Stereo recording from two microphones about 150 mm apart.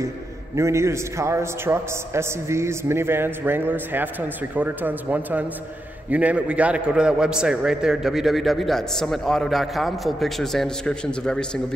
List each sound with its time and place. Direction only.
0.6 s a man's voice: 20° right (ahead or behind); by 11.6 s 5° left (ahead or behind)